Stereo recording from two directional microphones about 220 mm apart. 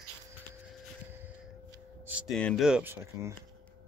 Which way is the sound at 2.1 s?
Centre (ahead or behind).